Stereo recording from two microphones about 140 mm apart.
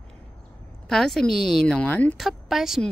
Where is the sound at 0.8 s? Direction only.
5° left (ahead or behind).